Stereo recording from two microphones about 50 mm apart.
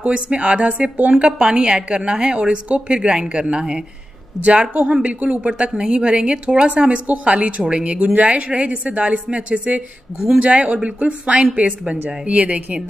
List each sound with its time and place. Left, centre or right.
0.0 s a woman's voice: right
1.1 s a woman's voice: centre
4.8 s a woman's voice: right
10.1 s a woman's voice: centre
10.4 s a woman's voice: right